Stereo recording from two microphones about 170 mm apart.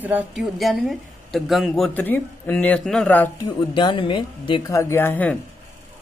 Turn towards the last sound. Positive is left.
turn(degrees=10)  # may be behind; listen again after turning